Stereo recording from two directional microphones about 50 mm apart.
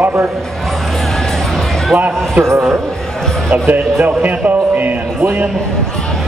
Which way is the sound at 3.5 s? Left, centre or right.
Right.